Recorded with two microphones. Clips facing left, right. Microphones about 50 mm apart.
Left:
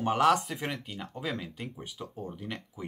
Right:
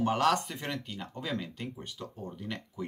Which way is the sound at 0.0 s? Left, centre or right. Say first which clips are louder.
Left 2 dB; centre.